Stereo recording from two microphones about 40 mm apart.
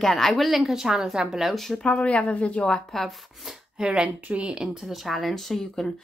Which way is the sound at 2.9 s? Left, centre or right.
Centre.